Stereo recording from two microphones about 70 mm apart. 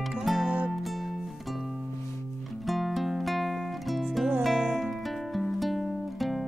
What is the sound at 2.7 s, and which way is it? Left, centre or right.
Music, centre.